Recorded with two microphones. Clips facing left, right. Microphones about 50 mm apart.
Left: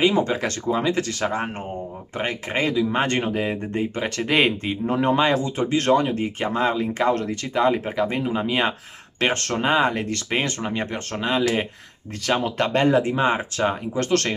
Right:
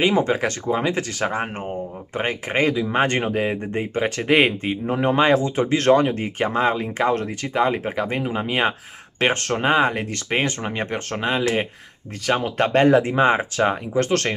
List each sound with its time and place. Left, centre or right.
0.0 s speech: right
12.5 s speech: right